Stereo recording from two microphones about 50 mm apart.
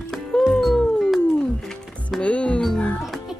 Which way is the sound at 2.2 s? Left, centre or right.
Left.